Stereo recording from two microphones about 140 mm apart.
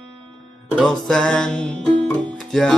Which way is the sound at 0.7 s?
5° left (ahead or behind).